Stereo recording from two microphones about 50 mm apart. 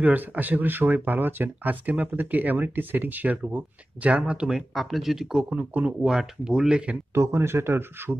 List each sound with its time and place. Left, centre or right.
0.0 s speech: right
4.7 s speech: centre
5.7 s speech: right
6.0 s speech: centre
7.2 s speech: right